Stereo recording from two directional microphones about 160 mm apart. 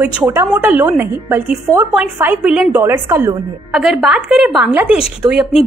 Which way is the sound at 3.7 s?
5° right (ahead or behind).